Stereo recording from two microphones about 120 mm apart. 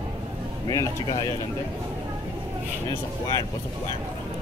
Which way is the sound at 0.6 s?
35° left (ahead or behind).